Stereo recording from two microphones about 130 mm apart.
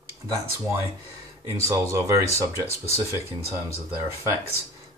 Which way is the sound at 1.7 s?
20° right (ahead or behind).